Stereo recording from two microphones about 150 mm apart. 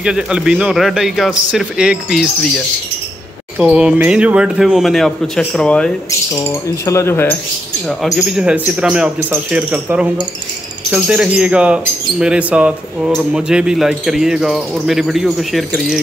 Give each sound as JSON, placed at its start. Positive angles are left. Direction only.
{"t": 0.0, "sound": "speech", "side_deg": -5}
{"t": 3.5, "sound": "speech", "side_deg": -5}
{"t": 6.3, "sound": "speech", "side_deg": 20}
{"t": 8.2, "sound": "speech", "side_deg": -5}